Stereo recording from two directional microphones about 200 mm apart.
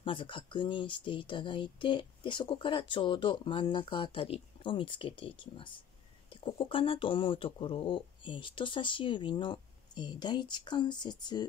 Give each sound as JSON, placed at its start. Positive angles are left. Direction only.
{"t": 0.0, "sound": "speech", "side_deg": 25}